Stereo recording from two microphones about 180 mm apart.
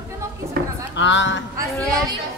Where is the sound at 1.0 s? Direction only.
90° left.